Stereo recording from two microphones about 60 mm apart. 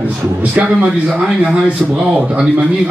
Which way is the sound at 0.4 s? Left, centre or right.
Right.